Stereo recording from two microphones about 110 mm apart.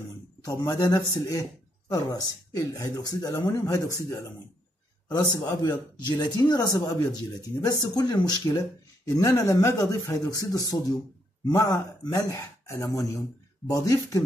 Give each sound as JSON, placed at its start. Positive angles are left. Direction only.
{"t": 0.4, "sound": "speech", "side_deg": 35}